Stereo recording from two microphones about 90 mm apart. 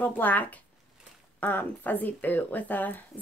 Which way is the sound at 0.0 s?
20° left (ahead or behind).